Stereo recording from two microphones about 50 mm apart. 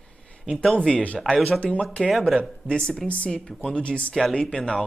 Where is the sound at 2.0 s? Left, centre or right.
Centre.